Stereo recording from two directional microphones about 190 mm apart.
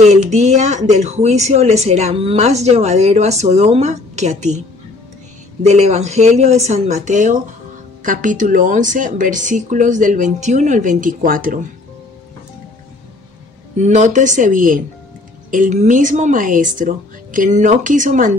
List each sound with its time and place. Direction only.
0.0 s speech: 35° right (ahead or behind)
5.6 s speech: 35° right (ahead or behind)
13.7 s speech: 40° right (ahead or behind)